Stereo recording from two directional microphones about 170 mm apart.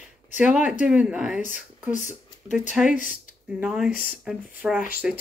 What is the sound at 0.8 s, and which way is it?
Speech, 5° right (ahead or behind).